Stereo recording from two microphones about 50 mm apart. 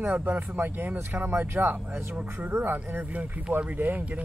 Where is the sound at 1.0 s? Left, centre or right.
Right.